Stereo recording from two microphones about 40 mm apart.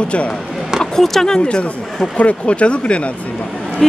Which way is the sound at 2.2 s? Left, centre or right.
Left.